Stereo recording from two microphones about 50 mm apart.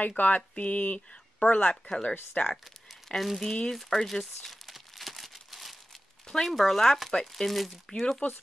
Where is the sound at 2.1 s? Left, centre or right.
Left.